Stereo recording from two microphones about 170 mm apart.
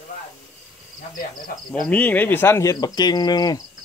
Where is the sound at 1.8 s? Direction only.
10° left (ahead or behind).